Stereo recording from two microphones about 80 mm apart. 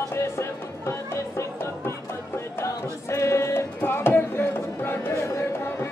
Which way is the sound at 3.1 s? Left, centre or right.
Left.